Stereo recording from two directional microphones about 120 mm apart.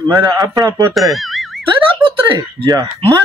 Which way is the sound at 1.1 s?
Centre (ahead or behind).